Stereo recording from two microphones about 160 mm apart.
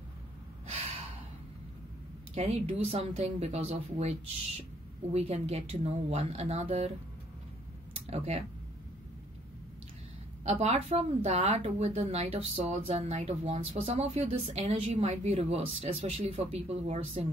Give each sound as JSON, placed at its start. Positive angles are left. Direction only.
{"t": 2.3, "sound": "a woman's voice", "side_deg": -40}
{"t": 10.4, "sound": "a woman's voice", "side_deg": -40}